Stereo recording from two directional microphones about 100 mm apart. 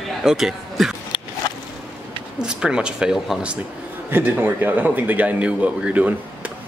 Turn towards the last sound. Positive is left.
turn(degrees=-15)  # may be behind; listen again after turning